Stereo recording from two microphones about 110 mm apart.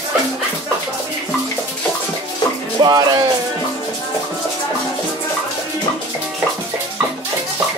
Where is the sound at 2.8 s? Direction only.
40° right (ahead or behind).